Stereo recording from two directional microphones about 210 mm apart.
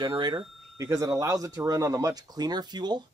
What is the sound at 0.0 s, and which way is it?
Speech, 20° right (ahead or behind).